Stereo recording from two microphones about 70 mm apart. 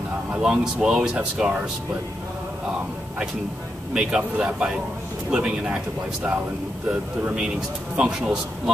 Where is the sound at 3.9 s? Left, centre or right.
Centre.